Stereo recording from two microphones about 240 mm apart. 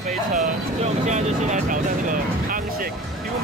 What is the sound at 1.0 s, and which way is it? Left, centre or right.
Speech, right.